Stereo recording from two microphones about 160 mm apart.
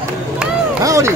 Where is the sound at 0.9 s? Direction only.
20° right (ahead or behind).